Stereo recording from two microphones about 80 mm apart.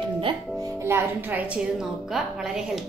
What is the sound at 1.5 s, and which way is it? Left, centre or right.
A woman's voice, centre.